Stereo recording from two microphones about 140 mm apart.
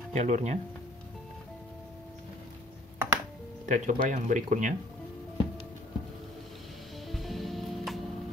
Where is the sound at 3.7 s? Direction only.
65° right (ahead or behind).